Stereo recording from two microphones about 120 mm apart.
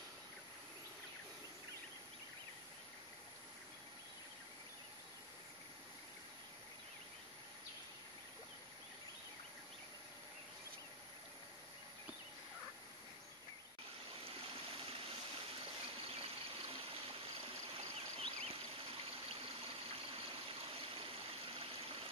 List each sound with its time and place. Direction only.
14.2 s stream: 50° right (ahead or behind)
15.6 s water: 50° right (ahead or behind)
17.7 s stream: 55° right (ahead or behind)